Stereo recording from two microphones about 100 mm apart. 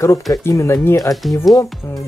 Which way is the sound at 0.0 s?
30° left (ahead or behind).